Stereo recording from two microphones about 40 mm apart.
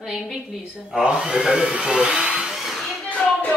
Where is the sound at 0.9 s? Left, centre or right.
Right.